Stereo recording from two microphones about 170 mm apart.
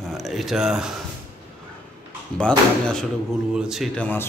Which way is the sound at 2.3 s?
5° left (ahead or behind).